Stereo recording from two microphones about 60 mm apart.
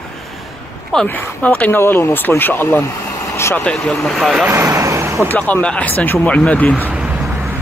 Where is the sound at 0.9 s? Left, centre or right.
Centre.